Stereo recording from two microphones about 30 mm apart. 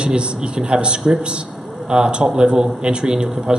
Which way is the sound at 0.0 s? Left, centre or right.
Right.